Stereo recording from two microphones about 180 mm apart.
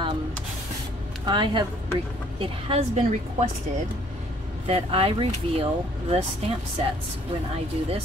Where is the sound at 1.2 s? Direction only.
25° right (ahead or behind).